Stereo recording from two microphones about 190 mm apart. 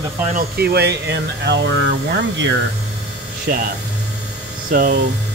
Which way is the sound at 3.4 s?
45° right (ahead or behind).